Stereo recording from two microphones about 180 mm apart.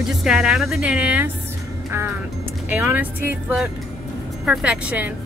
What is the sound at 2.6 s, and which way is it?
A woman's voice, 10° right (ahead or behind).